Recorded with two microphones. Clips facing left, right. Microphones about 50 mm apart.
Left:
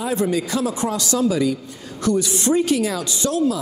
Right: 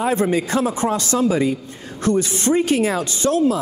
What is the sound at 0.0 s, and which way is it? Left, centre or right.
A man's voice, right.